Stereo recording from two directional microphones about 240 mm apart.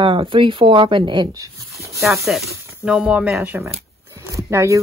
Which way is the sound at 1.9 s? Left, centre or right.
Centre.